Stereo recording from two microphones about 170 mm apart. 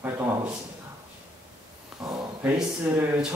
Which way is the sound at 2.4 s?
10° right (ahead or behind).